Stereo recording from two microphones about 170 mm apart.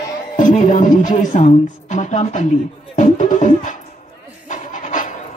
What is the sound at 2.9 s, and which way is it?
Music, 45° left (ahead or behind).